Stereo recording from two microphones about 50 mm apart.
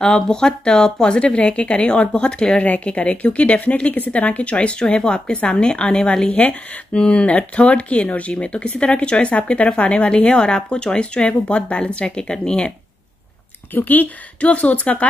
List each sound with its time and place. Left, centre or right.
0.0 s speech: centre
13.7 s speech: left